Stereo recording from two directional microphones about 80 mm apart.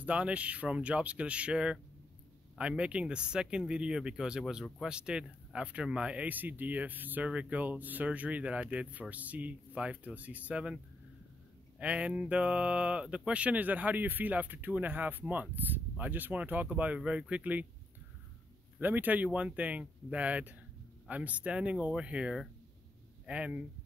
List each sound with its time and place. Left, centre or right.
0.0 s speech: centre
11.8 s speech: centre
18.8 s speech: right